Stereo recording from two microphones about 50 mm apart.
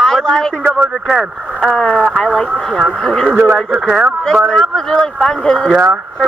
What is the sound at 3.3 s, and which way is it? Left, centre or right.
Speech, right.